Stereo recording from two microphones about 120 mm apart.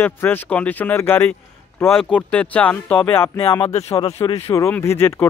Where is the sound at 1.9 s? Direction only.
5° left (ahead or behind).